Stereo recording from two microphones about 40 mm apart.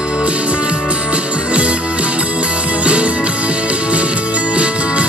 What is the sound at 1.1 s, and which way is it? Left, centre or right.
Music, right.